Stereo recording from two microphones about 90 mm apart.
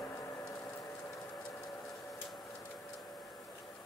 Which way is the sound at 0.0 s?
25° left (ahead or behind).